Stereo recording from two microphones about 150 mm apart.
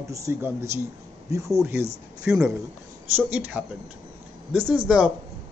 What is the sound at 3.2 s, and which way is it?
Speech, 10° right (ahead or behind).